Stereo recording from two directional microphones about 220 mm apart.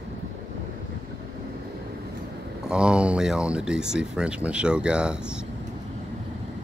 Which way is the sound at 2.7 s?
5° right (ahead or behind).